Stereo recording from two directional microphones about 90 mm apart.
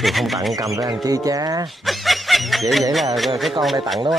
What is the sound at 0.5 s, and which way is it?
Speech, 40° right (ahead or behind).